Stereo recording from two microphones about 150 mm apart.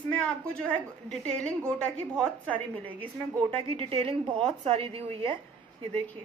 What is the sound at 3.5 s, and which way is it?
A woman's voice, 40° right (ahead or behind).